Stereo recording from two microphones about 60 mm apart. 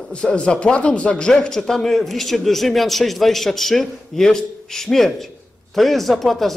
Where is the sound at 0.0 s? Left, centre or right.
Centre.